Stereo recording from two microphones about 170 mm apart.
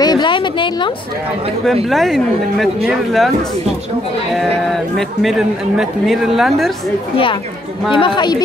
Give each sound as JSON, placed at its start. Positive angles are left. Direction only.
{"t": 0.0, "sound": "a sound", "side_deg": 25}
{"t": 1.9, "sound": "speech", "side_deg": 0}
{"t": 4.3, "sound": "speech", "side_deg": 0}
{"t": 7.9, "sound": "a woman's voice", "side_deg": 25}